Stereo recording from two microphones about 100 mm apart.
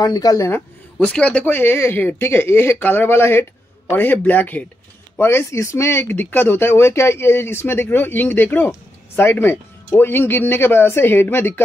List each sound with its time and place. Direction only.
0.0 s speech: 40° left (ahead or behind)
0.5 s a man's voice: 15° left (ahead or behind)